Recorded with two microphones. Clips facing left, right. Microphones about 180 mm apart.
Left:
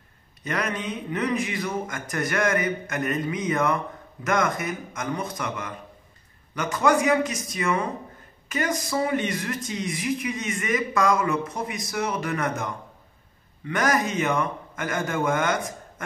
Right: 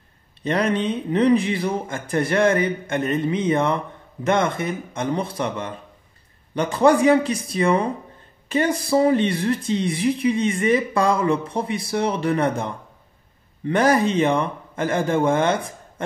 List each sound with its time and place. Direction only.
0.4 s speech: 30° right (ahead or behind)